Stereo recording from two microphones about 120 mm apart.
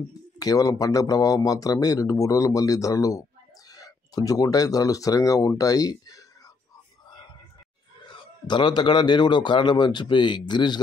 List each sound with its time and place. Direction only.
0.4 s speech: 30° left (ahead or behind)
8.1 s a man's voice: 40° left (ahead or behind)